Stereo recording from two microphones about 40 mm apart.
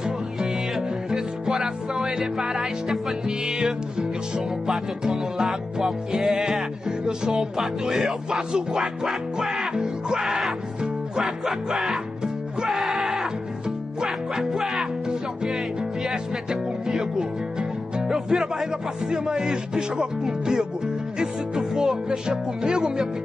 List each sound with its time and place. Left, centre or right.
0.0 s music: centre
4.4 s speech: centre
12.6 s music: centre
16.4 s speech: centre
19.1 s speech: centre